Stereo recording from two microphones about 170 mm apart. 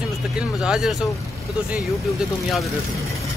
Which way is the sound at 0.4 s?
5° right (ahead or behind).